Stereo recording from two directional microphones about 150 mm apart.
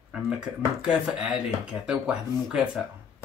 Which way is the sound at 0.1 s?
5° right (ahead or behind).